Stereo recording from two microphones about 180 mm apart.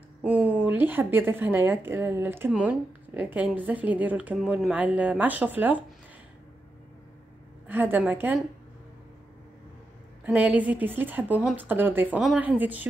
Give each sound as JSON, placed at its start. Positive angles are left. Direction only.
{"t": 0.2, "sound": "a woman's voice", "side_deg": -10}
{"t": 7.6, "sound": "a woman's voice", "side_deg": -10}
{"t": 10.2, "sound": "a woman's voice", "side_deg": -10}